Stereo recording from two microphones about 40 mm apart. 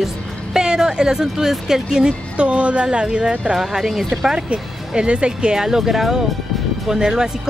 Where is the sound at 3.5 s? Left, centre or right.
Centre.